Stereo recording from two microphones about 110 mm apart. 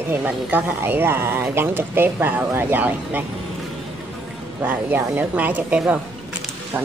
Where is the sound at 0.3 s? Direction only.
15° right (ahead or behind).